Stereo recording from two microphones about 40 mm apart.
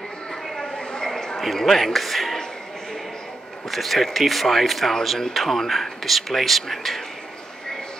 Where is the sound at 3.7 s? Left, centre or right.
Centre.